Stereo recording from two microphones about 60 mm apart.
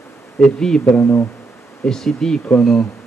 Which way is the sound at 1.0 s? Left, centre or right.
Left.